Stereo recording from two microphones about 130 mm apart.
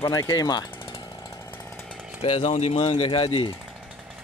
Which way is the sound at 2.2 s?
55° left (ahead or behind).